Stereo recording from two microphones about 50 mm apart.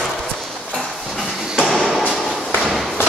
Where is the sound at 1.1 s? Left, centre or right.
Centre.